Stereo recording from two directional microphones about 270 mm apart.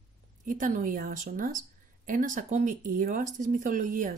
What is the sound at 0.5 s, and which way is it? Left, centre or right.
A woman's voice, right.